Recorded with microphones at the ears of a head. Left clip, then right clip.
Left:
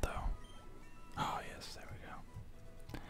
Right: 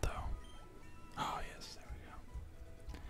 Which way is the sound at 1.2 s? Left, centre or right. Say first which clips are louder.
Left 1 dB; centre.